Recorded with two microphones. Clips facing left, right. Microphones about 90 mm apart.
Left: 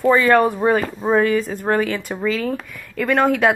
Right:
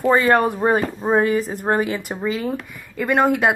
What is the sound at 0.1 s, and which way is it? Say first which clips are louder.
A woman's voice: left 1 dB; 30° right (ahead or behind).